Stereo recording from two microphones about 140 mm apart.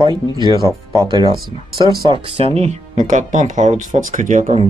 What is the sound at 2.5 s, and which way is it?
Speech, 55° right (ahead or behind).